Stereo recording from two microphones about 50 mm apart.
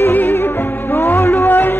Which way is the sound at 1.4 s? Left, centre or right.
Left.